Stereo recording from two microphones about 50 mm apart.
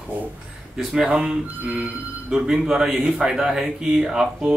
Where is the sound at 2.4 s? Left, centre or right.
Centre.